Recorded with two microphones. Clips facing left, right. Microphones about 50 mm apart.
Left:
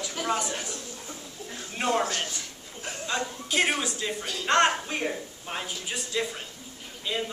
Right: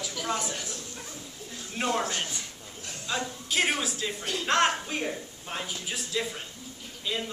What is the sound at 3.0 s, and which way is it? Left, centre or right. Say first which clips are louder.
A man's voice: left 1 dB; centre.